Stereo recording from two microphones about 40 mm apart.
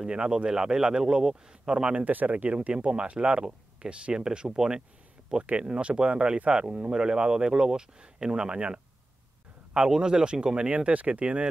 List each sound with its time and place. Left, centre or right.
0.0 s speech: right
1.0 s speech: centre
1.5 s speech: right
2.0 s speech: right
2.7 s speech: right
5.6 s speech: right
9.8 s speech: centre
10.7 s speech: right